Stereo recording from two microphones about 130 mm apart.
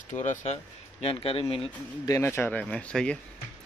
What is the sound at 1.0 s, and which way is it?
Speech, 45° left (ahead or behind).